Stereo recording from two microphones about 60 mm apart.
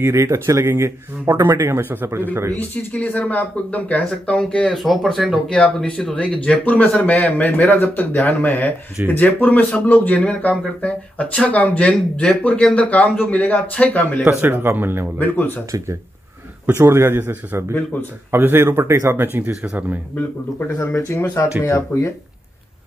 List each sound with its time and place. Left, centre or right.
0.0 s a man's voice: right
2.5 s speech: left
5.1 s speech: centre
5.5 s speech: centre
14.4 s a man's voice: right
15.1 s speech: left
16.7 s a man's voice: right
19.1 s a man's voice: right
21.1 s speech: left
21.6 s speech: left